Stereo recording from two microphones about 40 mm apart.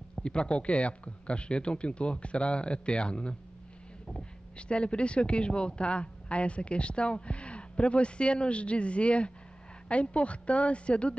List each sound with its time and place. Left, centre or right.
0.1 s a woman's voice: left